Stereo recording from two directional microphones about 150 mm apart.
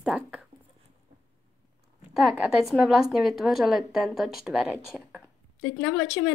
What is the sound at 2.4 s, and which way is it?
A woman's voice, 5° right (ahead or behind).